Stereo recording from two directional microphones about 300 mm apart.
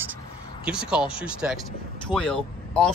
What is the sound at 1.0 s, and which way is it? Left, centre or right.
Speech, centre.